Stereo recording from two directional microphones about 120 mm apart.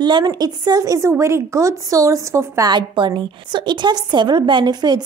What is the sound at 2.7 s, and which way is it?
A woman's voice, 40° right (ahead or behind).